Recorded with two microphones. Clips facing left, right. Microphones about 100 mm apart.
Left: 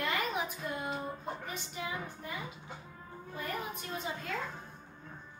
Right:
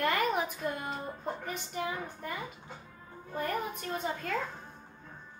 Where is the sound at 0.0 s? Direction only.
50° right (ahead or behind).